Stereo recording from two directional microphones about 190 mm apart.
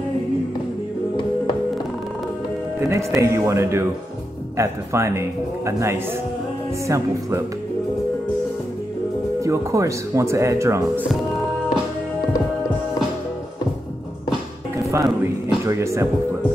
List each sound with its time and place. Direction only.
2.8 s speech: 15° right (ahead or behind)
9.4 s speech: 15° right (ahead or behind)
14.8 s music: 15° right (ahead or behind)
15.6 s speech: 15° right (ahead or behind)